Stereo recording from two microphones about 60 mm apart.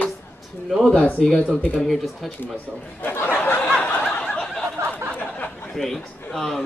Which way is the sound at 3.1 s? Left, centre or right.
Left.